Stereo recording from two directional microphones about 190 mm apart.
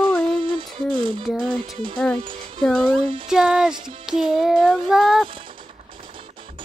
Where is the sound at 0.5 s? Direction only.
25° right (ahead or behind).